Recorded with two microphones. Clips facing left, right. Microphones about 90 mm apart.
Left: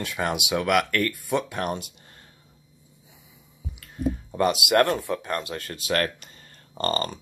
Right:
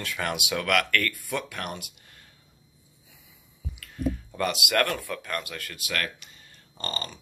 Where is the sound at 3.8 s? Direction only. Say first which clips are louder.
Left 2 dB; 25° left (ahead or behind).